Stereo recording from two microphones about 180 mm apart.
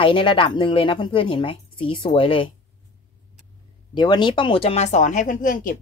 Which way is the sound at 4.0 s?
25° left (ahead or behind).